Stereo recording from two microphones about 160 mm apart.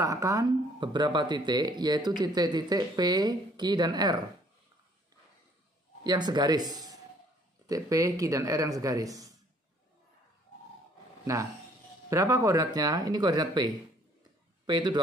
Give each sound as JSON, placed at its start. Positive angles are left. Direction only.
{"t": 0.0, "sound": "speech", "side_deg": -20}
{"t": 6.0, "sound": "speech", "side_deg": -25}
{"t": 11.3, "sound": "speech", "side_deg": -20}
{"t": 14.7, "sound": "speech", "side_deg": -25}